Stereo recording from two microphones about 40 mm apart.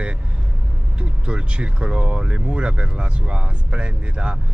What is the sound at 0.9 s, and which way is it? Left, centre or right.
Speech, right.